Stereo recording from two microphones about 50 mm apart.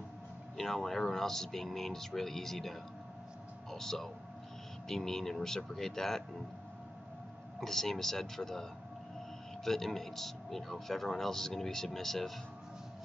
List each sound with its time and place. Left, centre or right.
0.6 s speech: centre
7.6 s speech: centre
9.7 s speech: centre